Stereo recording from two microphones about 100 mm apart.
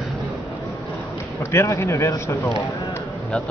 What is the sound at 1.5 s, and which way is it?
Speech, 30° left (ahead or behind).